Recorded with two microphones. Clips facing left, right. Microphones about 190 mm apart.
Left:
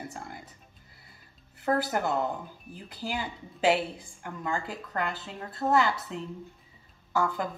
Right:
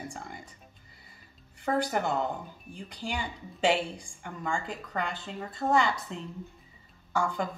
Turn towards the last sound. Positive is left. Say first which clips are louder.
# left 1 dB
turn(degrees=5)  # may be behind; listen again after turning